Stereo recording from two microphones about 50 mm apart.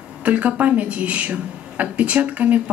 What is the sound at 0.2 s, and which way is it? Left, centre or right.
A woman's voice, right.